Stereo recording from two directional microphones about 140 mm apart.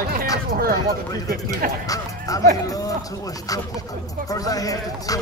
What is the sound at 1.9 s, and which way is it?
Speech, 25° left (ahead or behind).